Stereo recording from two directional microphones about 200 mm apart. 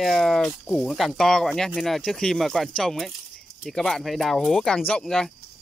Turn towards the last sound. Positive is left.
turn(degrees=0)  # may be behind; listen again after turning